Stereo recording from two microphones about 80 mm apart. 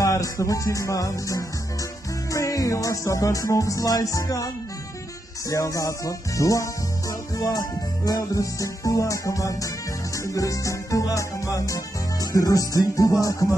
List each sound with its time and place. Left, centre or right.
0.0 s music: left
5.5 s music: left